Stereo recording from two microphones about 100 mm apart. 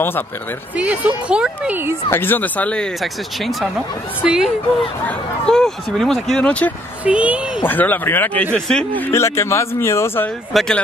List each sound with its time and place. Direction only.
0.7 s speech: 15° right (ahead or behind)
2.0 s speech: 20° left (ahead or behind)
3.0 s speech: centre (ahead or behind)
5.5 s speech: 5° left (ahead or behind)
7.1 s speech: 10° right (ahead or behind)
7.6 s speech: 20° left (ahead or behind)
8.5 s speech: 5° left (ahead or behind)
8.9 s speech: 20° left (ahead or behind)
10.5 s speech: 5° left (ahead or behind)